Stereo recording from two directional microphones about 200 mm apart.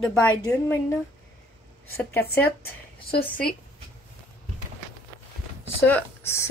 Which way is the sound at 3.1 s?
50° left (ahead or behind).